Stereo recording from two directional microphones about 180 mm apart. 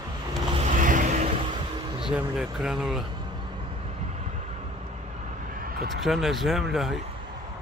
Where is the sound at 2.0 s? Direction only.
5° right (ahead or behind).